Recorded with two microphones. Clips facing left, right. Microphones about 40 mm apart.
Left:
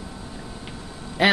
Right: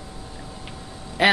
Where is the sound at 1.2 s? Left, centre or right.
Centre.